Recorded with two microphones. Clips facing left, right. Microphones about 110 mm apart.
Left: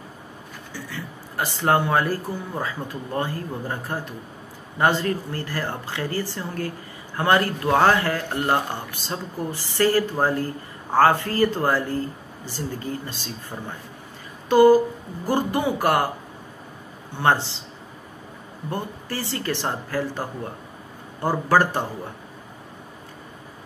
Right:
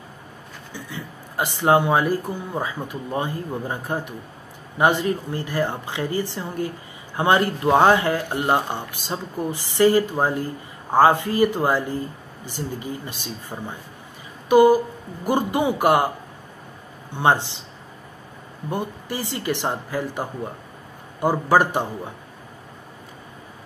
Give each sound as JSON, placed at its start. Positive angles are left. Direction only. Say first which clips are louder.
{"t": 0.7, "sound": "speech", "louder": "even", "side_deg": -20}
{"t": 14.5, "sound": "a sound", "louder": "even", "side_deg": -15}
{"t": 15.2, "sound": "speech", "louder": "right 2 dB", "side_deg": -15}
{"t": 17.1, "sound": "speech", "louder": "right 1 dB", "side_deg": -15}
{"t": 18.7, "sound": "speech", "louder": "right 2 dB", "side_deg": -15}